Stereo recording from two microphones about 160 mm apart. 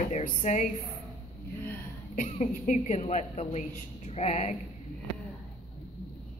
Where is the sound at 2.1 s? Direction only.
50° left (ahead or behind).